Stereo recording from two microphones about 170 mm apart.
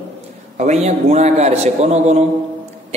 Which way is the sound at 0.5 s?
40° right (ahead or behind).